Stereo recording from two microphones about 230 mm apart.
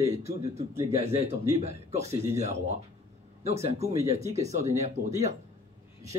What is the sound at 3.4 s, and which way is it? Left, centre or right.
A man's voice, right.